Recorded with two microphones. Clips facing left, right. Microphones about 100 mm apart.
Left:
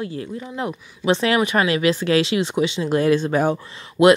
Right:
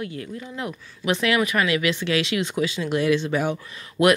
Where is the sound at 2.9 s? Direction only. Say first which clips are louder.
Left 4 dB; 40° left (ahead or behind).